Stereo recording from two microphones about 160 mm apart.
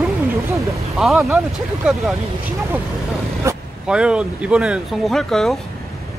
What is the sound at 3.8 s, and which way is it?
Speech, 5° right (ahead or behind).